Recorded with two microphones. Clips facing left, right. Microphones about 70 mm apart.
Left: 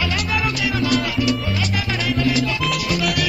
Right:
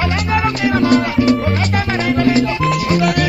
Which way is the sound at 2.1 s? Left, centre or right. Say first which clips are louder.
Right 6 dB; right.